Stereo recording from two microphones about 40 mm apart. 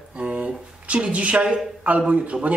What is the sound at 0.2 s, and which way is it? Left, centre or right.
Speech, right.